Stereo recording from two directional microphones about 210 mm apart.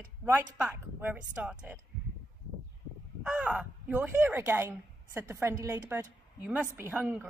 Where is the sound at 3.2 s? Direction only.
5° right (ahead or behind).